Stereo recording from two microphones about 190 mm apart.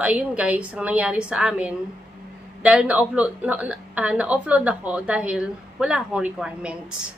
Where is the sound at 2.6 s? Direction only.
5° right (ahead or behind).